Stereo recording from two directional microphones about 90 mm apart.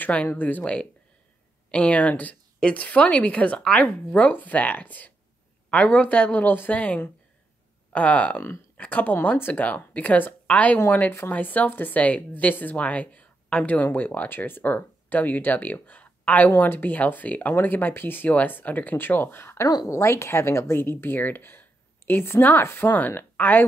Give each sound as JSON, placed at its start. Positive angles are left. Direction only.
{"t": 0.0, "sound": "a woman's voice", "side_deg": 15}